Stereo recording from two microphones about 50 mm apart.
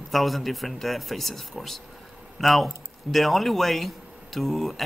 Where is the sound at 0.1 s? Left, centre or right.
Centre.